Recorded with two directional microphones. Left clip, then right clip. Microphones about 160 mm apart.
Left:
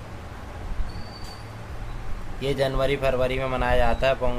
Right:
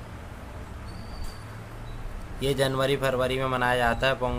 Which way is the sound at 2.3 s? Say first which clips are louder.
Left 1 dB; 25° right (ahead or behind).